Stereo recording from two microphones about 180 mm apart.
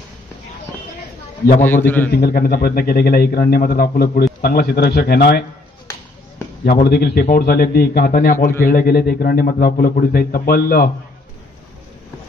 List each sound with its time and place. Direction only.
2.0 s a man's voice: 60° left (ahead or behind)
6.6 s a man's voice: 60° left (ahead or behind)